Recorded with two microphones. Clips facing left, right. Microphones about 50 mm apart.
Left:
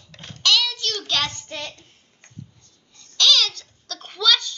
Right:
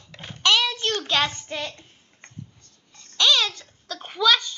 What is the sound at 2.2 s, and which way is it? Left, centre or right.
Babbling, right.